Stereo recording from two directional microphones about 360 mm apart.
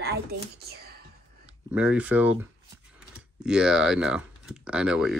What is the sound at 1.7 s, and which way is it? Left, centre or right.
Speech, centre.